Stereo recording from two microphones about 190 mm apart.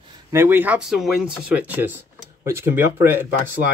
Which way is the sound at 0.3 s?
10° right (ahead or behind).